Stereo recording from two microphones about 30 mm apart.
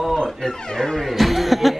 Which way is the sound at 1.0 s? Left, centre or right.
Centre.